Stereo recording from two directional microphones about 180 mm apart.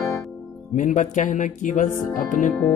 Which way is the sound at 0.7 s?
45° left (ahead or behind).